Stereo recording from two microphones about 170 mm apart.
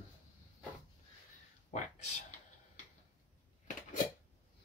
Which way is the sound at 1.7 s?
45° left (ahead or behind).